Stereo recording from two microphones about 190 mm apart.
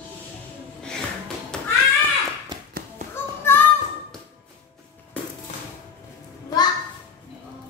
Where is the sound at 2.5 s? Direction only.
25° right (ahead or behind).